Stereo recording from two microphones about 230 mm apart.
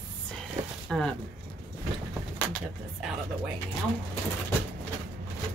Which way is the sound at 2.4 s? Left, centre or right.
Centre.